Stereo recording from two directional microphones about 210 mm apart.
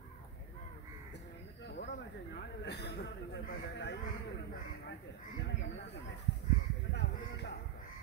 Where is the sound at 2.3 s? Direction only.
55° left (ahead or behind).